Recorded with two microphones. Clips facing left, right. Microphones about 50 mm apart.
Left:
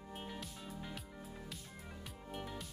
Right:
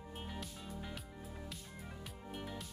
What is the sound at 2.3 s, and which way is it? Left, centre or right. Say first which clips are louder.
Music: left 1 dB; centre.